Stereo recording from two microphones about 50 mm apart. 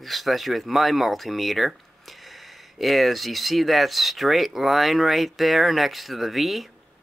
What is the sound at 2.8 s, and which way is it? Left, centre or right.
Speech, centre.